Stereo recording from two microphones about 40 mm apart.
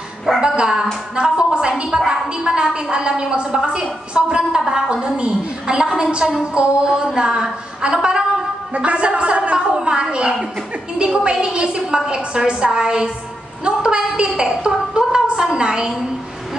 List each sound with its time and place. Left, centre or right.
0.4 s dog: right
1.1 s a sound: centre
1.9 s a woman's voice: centre
8.7 s a woman's voice: right